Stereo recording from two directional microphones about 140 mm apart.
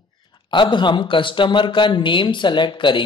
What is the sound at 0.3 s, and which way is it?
A man's voice, 35° left (ahead or behind).